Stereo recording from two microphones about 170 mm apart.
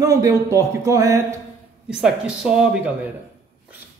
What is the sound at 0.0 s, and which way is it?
Speech, 20° right (ahead or behind).